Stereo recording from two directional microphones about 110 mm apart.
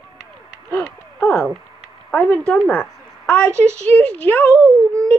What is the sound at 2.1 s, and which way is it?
Speech, 10° left (ahead or behind).